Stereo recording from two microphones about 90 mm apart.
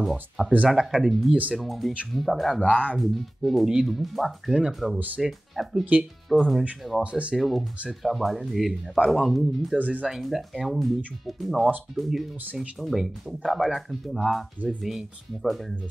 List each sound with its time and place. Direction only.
0.0 s speech: 5° right (ahead or behind)
2.7 s speech: 15° left (ahead or behind)
3.0 s speech: centre (ahead or behind)
4.9 s speech: 15° right (ahead or behind)
5.2 s speech: centre (ahead or behind)
7.0 s speech: 15° right (ahead or behind)
7.3 s speech: centre (ahead or behind)
9.8 s speech: 15° right (ahead or behind)
10.0 s speech: centre (ahead or behind)